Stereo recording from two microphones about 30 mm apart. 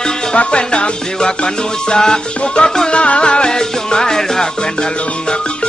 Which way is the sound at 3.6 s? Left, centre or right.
Left.